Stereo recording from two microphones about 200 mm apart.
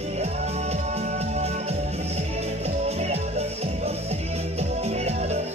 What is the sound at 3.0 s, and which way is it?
Music, 30° right (ahead or behind).